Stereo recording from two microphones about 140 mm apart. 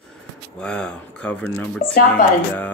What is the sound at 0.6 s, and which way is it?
Music, 5° left (ahead or behind).